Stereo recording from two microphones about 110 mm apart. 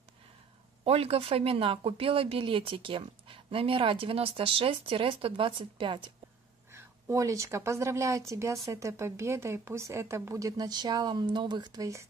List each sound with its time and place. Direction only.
0.8 s a woman's voice: 65° right (ahead or behind); by 6.1 s 45° right (ahead or behind)
6.7 s speech: 25° right (ahead or behind)